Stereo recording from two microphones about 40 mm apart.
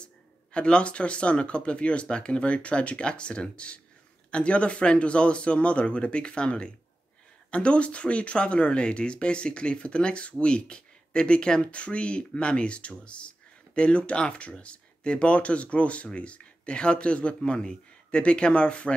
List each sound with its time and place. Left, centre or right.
0.0 s speech: left